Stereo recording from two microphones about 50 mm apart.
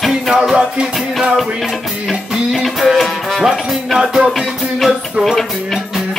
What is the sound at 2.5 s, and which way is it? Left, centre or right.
Music, centre.